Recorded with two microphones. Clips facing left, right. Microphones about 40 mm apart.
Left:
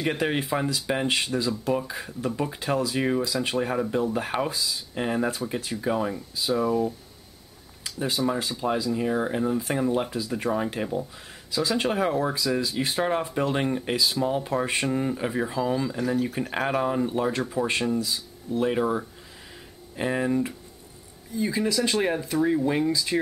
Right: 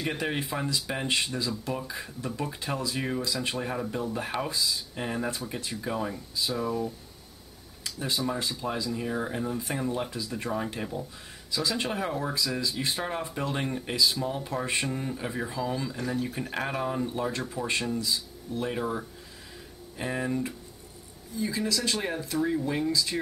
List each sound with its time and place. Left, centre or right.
0.0 s speech: centre
1.2 s speech: centre
4.6 s speech: centre
4.9 s speech: centre